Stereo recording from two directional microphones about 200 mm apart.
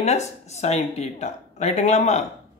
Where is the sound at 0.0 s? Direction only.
35° left (ahead or behind).